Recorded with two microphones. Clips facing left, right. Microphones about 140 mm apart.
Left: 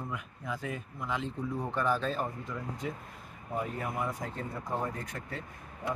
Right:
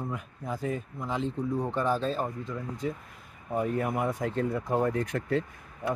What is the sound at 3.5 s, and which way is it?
Speech, 50° right (ahead or behind).